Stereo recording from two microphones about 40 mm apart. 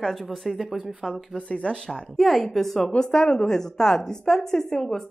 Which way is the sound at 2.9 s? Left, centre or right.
Centre.